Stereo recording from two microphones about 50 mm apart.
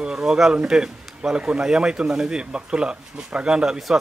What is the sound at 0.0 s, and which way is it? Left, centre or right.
Speech, centre.